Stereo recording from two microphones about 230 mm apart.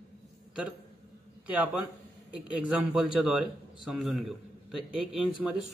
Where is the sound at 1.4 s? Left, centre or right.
Centre.